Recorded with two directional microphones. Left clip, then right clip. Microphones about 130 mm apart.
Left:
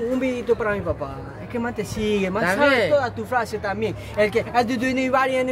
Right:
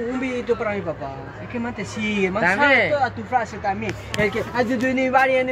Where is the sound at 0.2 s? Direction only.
45° left (ahead or behind).